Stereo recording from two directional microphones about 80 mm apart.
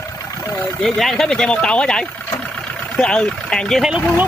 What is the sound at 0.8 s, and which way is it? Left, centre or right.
Speech, centre.